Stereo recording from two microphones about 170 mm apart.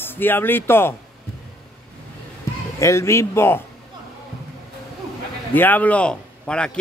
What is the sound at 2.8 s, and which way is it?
Speech, 15° left (ahead or behind).